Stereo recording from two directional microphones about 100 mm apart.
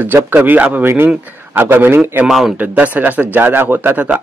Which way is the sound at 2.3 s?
Centre (ahead or behind).